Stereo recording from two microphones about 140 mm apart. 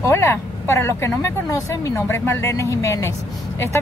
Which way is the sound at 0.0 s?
20° left (ahead or behind).